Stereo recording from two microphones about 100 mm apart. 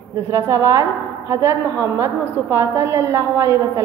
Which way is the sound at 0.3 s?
30° right (ahead or behind).